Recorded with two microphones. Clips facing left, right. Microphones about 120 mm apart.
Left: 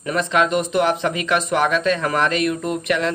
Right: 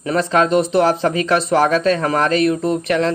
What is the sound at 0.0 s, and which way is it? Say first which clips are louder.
Speech: right 3 dB; 35° right (ahead or behind).